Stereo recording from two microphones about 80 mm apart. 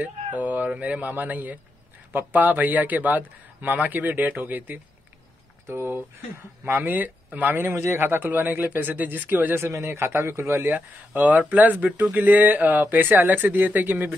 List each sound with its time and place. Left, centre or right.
0.0 s a man's voice: centre
9.6 s a man's voice: right